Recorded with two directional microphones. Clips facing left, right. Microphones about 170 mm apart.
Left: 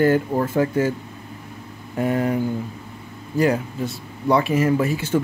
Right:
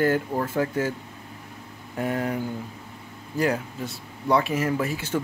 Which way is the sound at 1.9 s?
10° left (ahead or behind).